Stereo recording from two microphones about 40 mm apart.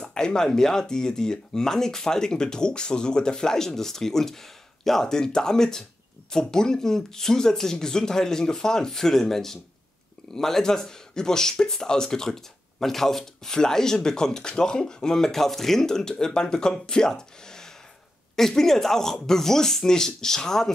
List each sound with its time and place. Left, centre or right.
0.0 s speech: centre